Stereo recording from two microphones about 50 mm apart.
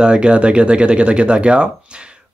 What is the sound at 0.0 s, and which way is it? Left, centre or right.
Speech, centre.